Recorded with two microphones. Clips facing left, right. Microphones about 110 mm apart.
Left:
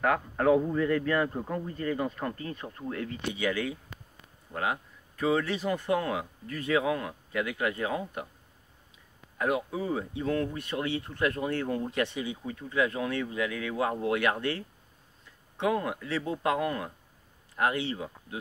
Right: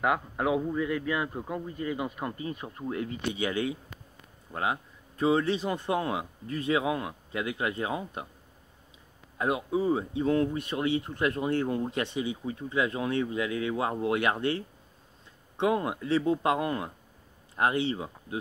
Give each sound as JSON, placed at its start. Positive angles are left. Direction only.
{"t": 0.0, "sound": "a man's voice", "side_deg": -10}
{"t": 9.4, "sound": "speech", "side_deg": -25}